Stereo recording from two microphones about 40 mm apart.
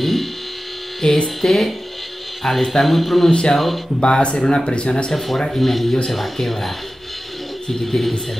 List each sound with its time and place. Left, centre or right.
0.0 s a sound: centre
1.0 s speech: centre
1.5 s speech: centre
3.3 s speech: centre
3.5 s speech: centre
4.0 s speech: left
5.1 s speech: centre